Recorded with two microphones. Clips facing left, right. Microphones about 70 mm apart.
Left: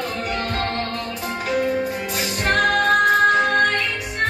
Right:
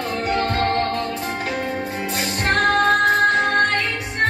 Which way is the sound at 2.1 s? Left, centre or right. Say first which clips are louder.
Even; right.